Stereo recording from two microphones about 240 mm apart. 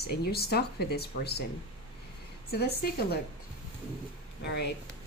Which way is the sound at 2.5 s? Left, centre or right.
Left.